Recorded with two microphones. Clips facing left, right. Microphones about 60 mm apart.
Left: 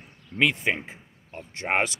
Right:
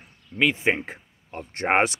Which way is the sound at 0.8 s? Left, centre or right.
Right.